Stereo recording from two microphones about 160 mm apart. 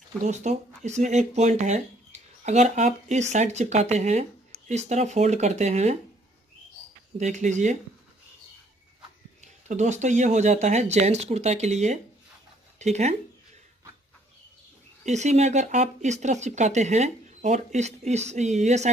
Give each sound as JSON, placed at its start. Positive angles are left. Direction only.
{"t": 0.2, "sound": "speech", "side_deg": -50}
{"t": 7.2, "sound": "speech", "side_deg": -50}
{"t": 9.4, "sound": "speech", "side_deg": -50}
{"t": 15.0, "sound": "speech", "side_deg": -45}